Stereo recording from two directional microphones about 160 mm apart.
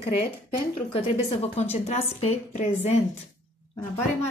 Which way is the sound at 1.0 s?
35° left (ahead or behind).